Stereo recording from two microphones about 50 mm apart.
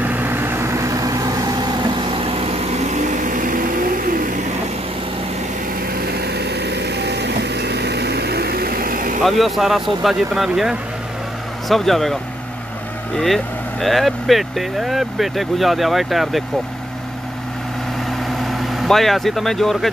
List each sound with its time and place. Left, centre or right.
0.0 s vehicle: right
0.7 s vehicle: right
9.2 s speech: centre
11.7 s speech: centre
13.2 s speech: centre
18.2 s vehicle: centre